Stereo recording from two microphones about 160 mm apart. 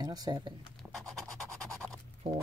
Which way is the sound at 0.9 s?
Centre (ahead or behind).